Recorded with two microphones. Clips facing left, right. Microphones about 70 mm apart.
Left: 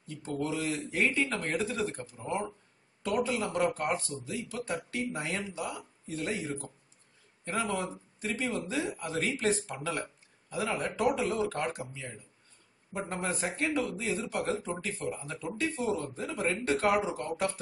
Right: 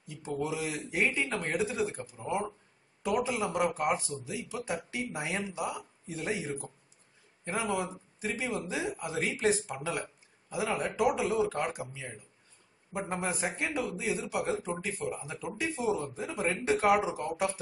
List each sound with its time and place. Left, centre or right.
0.0 s speech: centre